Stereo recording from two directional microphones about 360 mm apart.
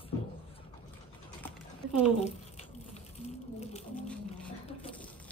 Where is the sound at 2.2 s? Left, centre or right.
Centre.